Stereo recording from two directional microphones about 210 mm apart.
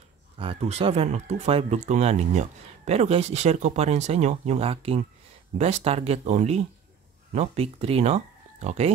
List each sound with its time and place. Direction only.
0.4 s speech: 25° right (ahead or behind)